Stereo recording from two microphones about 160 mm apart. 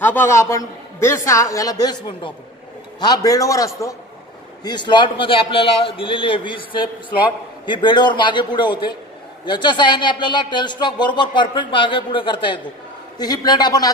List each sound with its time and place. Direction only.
0.0 s a man's voice: 15° left (ahead or behind)